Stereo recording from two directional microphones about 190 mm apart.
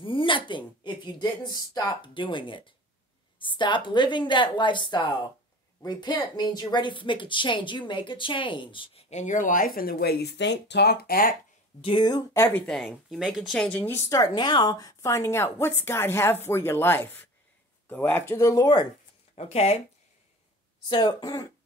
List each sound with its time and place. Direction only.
0.0 s speech: 25° left (ahead or behind); by 11.3 s 50° left (ahead or behind)
11.8 s speech: 25° left (ahead or behind)
19.3 s speech: 35° left (ahead or behind)
20.9 s speech: 20° left (ahead or behind)